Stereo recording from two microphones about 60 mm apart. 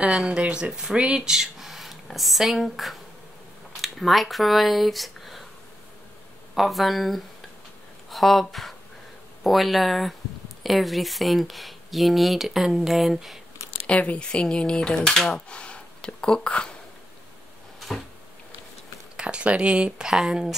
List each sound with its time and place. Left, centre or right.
0.0 s speech: centre
6.5 s speech: centre
13.8 s speech: left
17.7 s a sound: centre
19.1 s speech: centre